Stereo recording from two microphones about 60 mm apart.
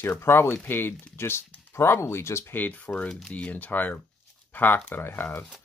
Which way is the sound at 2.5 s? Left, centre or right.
Left.